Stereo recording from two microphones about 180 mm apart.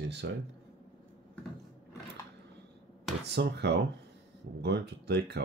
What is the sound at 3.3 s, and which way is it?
Speech, 70° right (ahead or behind).